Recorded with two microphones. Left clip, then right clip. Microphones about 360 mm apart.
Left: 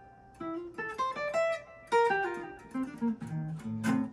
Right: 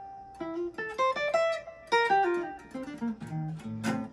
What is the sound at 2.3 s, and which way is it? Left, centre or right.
Music, centre.